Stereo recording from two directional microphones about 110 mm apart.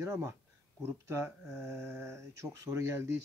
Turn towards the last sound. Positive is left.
turn(degrees=-25)  # may be behind; listen again after turning